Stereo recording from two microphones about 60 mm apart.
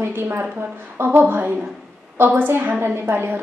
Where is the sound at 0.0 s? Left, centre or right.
Right.